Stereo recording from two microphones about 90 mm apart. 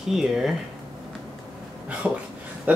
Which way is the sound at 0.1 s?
5° right (ahead or behind).